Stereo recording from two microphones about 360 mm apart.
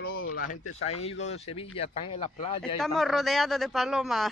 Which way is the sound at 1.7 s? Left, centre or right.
Centre.